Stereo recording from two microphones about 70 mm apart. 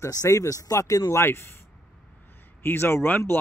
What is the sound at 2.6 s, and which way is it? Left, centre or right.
Speech, left.